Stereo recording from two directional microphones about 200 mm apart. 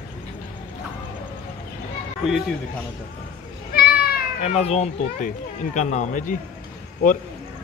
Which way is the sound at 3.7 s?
50° left (ahead or behind).